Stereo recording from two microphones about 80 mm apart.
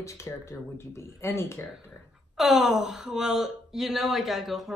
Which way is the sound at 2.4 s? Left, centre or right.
Centre.